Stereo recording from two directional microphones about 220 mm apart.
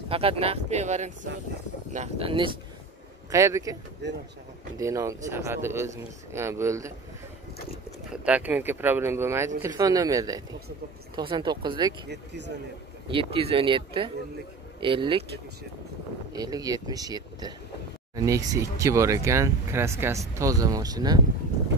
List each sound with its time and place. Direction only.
0.1 s speech: 25° right (ahead or behind)
4.0 s speech: 50° right (ahead or behind)
4.7 s speech: 15° right (ahead or behind)
8.1 s speech: 5° right (ahead or behind)
12.1 s speech: 50° right (ahead or behind)
13.1 s speech: 25° right (ahead or behind)
16.3 s speech: 15° right (ahead or behind)